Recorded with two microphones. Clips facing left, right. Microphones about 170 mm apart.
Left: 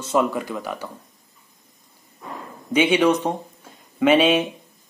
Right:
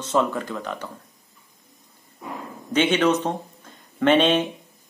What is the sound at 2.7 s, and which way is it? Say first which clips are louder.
Speech: left 2 dB; 10° left (ahead or behind).